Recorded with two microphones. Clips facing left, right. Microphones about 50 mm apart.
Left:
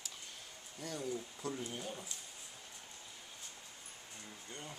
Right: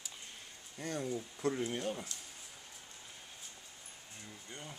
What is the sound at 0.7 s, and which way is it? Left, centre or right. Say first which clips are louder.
Speech: right 3 dB; right.